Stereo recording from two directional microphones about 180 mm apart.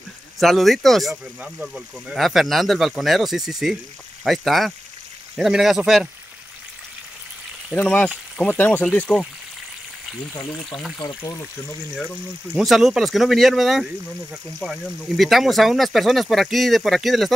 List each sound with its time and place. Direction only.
0.4 s speech: centre (ahead or behind)
7.7 s speech: 10° left (ahead or behind)
10.3 s speech: 20° left (ahead or behind)
10.7 s speech: centre (ahead or behind)
11.0 s speech: 20° left (ahead or behind)
12.5 s speech: centre (ahead or behind)